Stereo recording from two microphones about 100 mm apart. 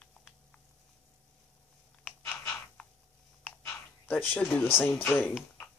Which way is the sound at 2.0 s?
10° left (ahead or behind).